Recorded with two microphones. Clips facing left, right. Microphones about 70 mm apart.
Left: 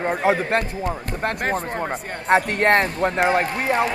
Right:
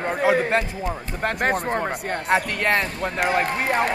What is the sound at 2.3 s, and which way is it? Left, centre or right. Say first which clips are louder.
Speech: left 5 dB; left.